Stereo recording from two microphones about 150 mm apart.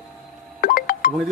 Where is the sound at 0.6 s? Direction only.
75° left (ahead or behind).